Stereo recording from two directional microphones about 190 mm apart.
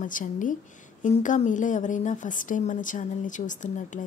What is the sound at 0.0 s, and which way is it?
A woman's voice, 45° left (ahead or behind).